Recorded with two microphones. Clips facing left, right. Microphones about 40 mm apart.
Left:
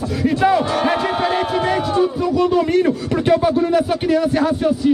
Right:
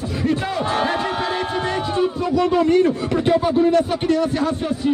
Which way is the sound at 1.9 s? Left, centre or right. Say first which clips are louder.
Left 2 dB; centre.